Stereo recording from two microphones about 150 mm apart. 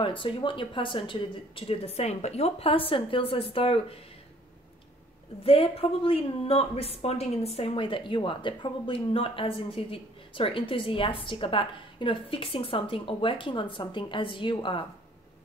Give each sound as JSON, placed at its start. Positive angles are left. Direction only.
{"t": 0.0, "sound": "a woman's voice", "side_deg": 35}
{"t": 5.4, "sound": "a woman's voice", "side_deg": 40}